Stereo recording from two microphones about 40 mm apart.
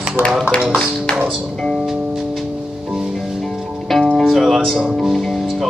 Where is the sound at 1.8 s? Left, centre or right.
Centre.